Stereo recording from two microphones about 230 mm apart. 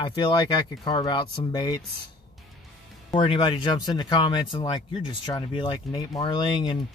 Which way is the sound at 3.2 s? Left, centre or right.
Left.